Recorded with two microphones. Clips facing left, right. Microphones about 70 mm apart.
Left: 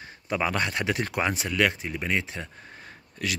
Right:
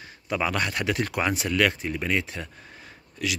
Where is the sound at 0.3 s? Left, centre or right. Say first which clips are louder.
Even; left.